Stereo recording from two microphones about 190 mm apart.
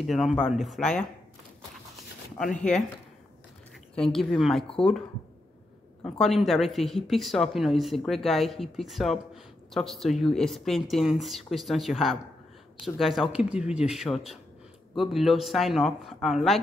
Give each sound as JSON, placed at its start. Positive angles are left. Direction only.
{"t": 0.0, "sound": "speech", "side_deg": 0}
{"t": 2.3, "sound": "speech", "side_deg": 5}
{"t": 3.9, "sound": "speech", "side_deg": 0}
{"t": 6.0, "sound": "speech", "side_deg": 0}